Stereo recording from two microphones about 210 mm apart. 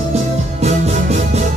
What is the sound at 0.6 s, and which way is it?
Music, 30° right (ahead or behind).